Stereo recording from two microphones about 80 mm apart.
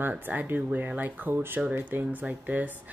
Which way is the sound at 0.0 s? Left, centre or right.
Right.